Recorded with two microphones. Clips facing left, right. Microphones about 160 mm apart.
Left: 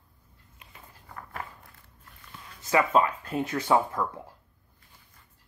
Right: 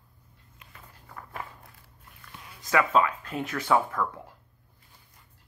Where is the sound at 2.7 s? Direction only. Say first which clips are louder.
Left 1 dB; 30° left (ahead or behind).